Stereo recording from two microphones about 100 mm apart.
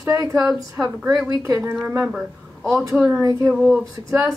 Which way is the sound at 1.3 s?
40° right (ahead or behind).